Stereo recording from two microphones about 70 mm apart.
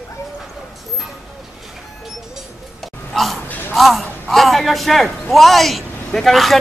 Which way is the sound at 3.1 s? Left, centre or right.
Centre.